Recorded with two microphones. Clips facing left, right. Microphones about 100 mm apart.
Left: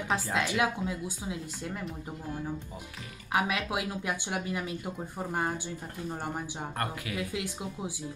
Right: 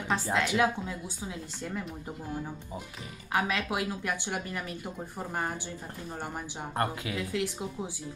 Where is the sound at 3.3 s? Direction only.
15° left (ahead or behind).